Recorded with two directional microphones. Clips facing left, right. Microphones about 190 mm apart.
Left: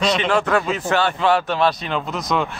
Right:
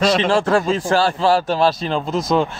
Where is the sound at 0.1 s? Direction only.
30° right (ahead or behind).